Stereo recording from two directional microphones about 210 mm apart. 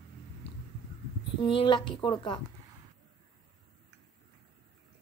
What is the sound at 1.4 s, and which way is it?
Speech, 25° left (ahead or behind).